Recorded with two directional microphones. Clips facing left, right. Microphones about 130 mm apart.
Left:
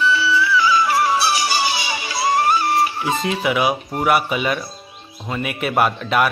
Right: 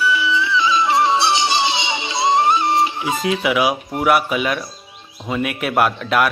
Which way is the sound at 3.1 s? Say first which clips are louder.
Right 1 dB; centre (ahead or behind).